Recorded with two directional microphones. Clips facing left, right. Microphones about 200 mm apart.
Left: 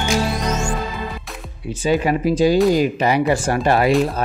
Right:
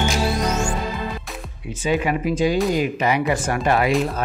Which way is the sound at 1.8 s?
35° left (ahead or behind).